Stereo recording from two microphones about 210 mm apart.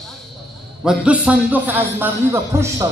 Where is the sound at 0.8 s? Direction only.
5° right (ahead or behind).